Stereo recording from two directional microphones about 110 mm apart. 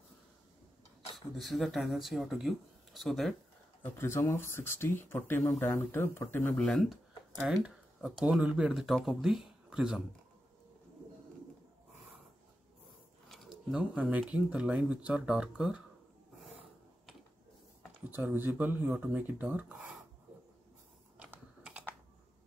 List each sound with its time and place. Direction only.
1.1 s speech: centre (ahead or behind)
3.8 s speech: 20° left (ahead or behind)
6.5 s speech: 5° left (ahead or behind)
7.4 s speech: 5° right (ahead or behind)
13.3 s a sound: 5° right (ahead or behind)
14.1 s speech: 10° right (ahead or behind)
18.1 s speech: 20° right (ahead or behind)
21.2 s typing: 10° right (ahead or behind)